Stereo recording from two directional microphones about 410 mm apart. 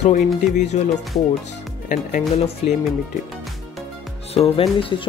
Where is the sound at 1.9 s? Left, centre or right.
Centre.